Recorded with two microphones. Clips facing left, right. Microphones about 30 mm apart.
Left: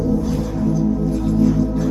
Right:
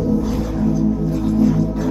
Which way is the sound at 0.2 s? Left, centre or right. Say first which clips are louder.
Right 1 dB; centre.